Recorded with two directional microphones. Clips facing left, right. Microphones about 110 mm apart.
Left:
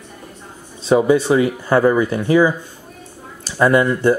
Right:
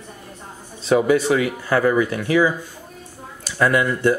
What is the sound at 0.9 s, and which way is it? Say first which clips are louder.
Speech: left 3 dB; 25° left (ahead or behind).